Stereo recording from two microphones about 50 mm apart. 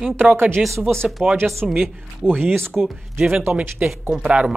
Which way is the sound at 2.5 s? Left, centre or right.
Right.